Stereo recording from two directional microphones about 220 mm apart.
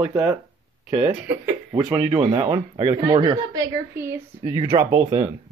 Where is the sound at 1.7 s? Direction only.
20° right (ahead or behind).